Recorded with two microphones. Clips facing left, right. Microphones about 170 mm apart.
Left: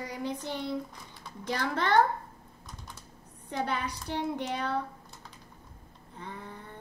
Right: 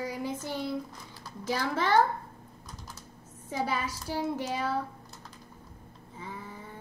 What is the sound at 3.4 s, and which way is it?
A child's voice, 5° right (ahead or behind).